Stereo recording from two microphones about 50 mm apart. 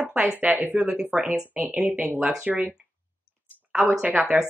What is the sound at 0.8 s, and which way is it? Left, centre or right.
Speech, right.